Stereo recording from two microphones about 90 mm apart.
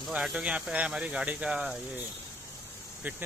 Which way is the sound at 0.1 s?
15° right (ahead or behind).